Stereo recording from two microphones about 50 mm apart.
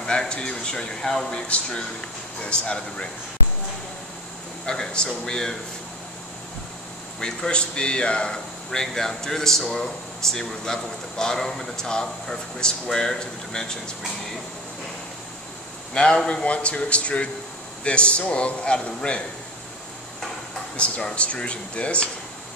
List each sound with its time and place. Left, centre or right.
0.0 s speech: centre
2.4 s a man's voice: centre
4.6 s speech: centre
7.2 s speech: centre
15.9 s a man's voice: centre
20.7 s a man's voice: left